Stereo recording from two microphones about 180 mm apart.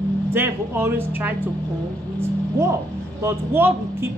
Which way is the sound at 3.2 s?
10° right (ahead or behind).